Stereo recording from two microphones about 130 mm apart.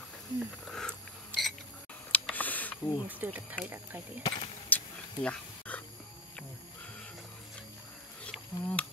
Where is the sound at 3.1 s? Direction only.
15° right (ahead or behind).